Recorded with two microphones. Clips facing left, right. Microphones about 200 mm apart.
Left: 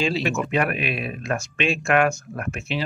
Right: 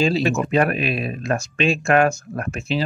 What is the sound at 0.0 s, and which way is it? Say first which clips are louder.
Speech: right 4 dB; 40° right (ahead or behind).